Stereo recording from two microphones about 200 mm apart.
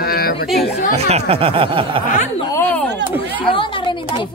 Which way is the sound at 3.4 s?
25° left (ahead or behind).